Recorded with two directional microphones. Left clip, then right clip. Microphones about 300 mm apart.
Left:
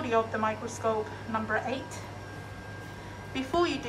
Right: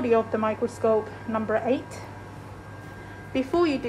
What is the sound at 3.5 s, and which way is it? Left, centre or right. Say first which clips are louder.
Speech: right 4 dB; left.